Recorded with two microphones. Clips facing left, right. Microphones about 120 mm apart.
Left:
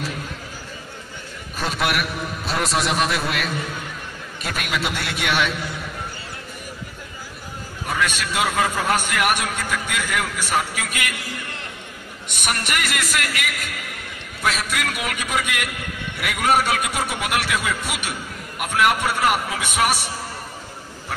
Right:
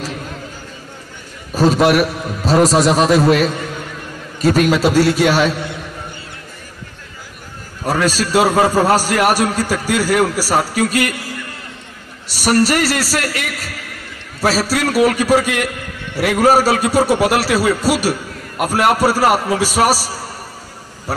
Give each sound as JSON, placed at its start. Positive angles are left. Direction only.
{"t": 1.5, "sound": "a man's voice", "side_deg": -35}
{"t": 7.8, "sound": "a man's voice", "side_deg": -35}
{"t": 12.3, "sound": "a man's voice", "side_deg": -35}